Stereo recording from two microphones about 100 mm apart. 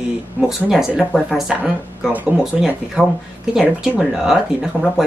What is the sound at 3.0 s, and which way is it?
Speech, 10° right (ahead or behind).